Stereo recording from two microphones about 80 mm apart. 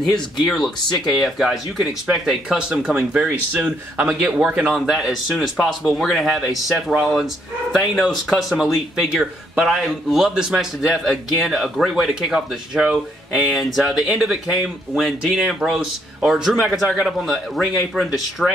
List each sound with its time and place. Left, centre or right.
0.5 s speech: centre